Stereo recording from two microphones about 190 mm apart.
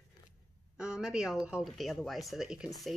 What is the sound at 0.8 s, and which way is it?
Speech, 5° right (ahead or behind).